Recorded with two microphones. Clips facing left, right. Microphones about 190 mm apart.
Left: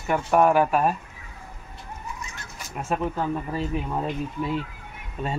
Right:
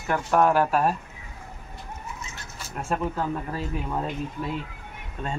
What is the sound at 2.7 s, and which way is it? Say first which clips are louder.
Speech: left 1 dB; 5° left (ahead or behind).